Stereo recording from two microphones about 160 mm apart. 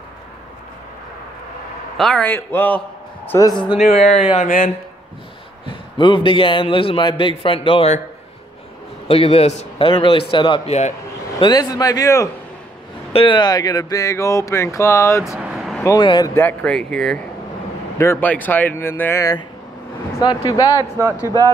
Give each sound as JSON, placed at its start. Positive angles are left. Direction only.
{"t": 2.0, "sound": "speech", "side_deg": 5}
{"t": 3.8, "sound": "speech", "side_deg": 45}
{"t": 5.7, "sound": "a man's voice", "side_deg": 30}
{"t": 9.0, "sound": "a man's voice", "side_deg": 35}
{"t": 13.1, "sound": "speech", "side_deg": 35}
{"t": 15.3, "sound": "vehicle", "side_deg": -5}
{"t": 15.8, "sound": "speech", "side_deg": 25}
{"t": 16.3, "sound": "speech", "side_deg": 10}
{"t": 17.9, "sound": "speech", "side_deg": 15}